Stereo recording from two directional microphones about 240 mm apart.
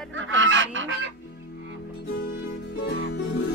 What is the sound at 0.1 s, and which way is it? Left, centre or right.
Goose, right.